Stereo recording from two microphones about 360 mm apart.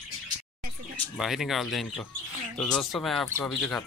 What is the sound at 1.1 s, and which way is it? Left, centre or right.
Speech, centre.